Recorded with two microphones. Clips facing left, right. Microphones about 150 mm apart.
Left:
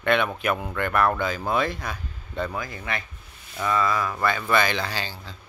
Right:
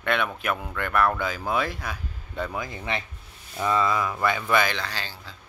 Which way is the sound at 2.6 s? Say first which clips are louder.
Right 1 dB; 20° right (ahead or behind).